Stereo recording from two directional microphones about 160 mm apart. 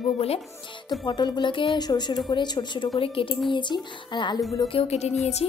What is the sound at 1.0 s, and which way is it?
A woman's voice, 25° left (ahead or behind).